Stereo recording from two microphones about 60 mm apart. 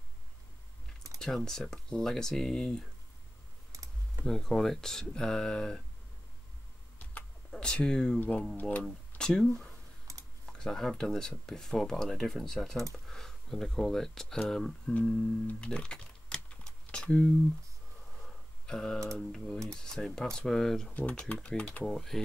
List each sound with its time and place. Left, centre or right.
1.2 s speech: centre
4.3 s speech: centre
7.5 s speech: centre
9.2 s speech: centre
10.1 s computer keyboard: right
10.4 s speech: centre
15.6 s music: centre
16.9 s a sound: centre
19.0 s speech: centre
20.9 s speech: left
21.8 s speech: centre